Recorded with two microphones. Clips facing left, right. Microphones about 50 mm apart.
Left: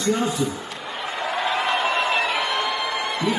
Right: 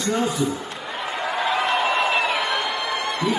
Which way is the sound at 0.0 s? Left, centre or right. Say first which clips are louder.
Even; centre.